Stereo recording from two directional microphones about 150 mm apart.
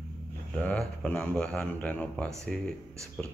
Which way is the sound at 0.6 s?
10° left (ahead or behind).